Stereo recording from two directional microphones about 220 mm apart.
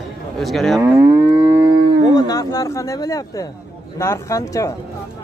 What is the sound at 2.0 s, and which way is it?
Speech, 15° left (ahead or behind).